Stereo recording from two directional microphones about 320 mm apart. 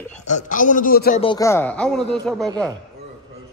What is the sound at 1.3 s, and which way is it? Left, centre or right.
Speech, centre.